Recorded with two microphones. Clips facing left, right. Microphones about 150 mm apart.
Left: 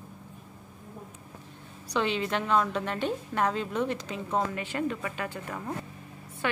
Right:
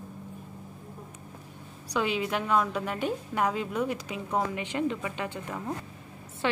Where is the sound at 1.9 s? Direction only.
10° right (ahead or behind).